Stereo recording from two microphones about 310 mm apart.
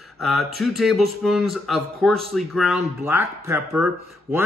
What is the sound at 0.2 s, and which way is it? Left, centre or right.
Speech, centre.